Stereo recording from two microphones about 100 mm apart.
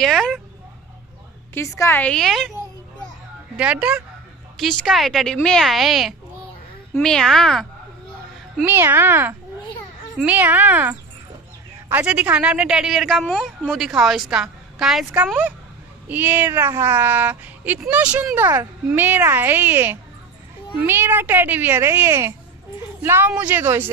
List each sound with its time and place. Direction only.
0.0 s a woman's voice: 5° left (ahead or behind)
1.5 s a woman's voice: 30° left (ahead or behind)
2.0 s a woman's voice: 10° left (ahead or behind)
2.2 s a woman's voice: centre (ahead or behind)
3.5 s a woman's voice: 15° right (ahead or behind)
4.6 s a woman's voice: 5° left (ahead or behind)
8.6 s a woman's voice: 25° right (ahead or behind); by 15.0 s 5° right (ahead or behind)
16.1 s a woman's voice: 20° right (ahead or behind)
18.4 s speech: 30° right (ahead or behind)